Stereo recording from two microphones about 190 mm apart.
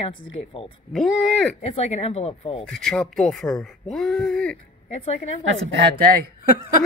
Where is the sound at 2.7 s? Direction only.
5° left (ahead or behind).